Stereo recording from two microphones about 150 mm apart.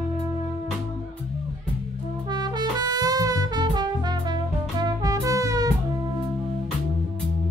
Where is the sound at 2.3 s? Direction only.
30° right (ahead or behind).